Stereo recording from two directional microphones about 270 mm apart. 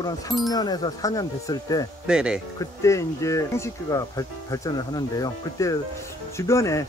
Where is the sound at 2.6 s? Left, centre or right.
Centre.